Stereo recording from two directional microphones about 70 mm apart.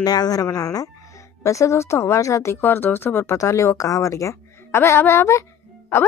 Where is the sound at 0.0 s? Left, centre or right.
Left.